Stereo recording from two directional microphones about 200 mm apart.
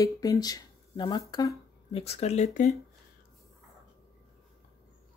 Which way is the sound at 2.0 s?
30° left (ahead or behind).